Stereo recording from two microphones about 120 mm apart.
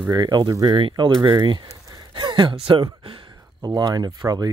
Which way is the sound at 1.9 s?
35° right (ahead or behind).